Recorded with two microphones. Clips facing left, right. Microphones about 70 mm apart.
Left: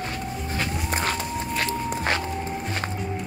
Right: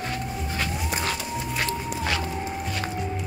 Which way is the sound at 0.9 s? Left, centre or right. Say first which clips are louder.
Left 2 dB; left.